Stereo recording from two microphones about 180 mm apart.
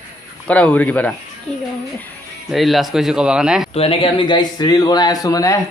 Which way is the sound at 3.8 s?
30° left (ahead or behind).